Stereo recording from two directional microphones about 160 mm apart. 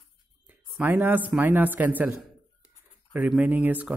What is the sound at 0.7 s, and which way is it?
Speech, 10° right (ahead or behind).